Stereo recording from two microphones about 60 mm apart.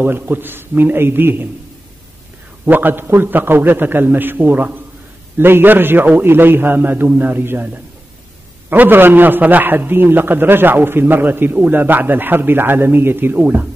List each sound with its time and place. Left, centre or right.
0.0 s a man's voice: right
2.6 s a man's voice: right